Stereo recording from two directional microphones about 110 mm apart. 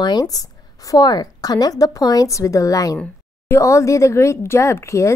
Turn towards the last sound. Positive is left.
turn(degrees=25)  # may be behind; listen again after turning